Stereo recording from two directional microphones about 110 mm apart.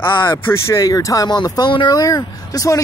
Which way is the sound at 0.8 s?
35° left (ahead or behind).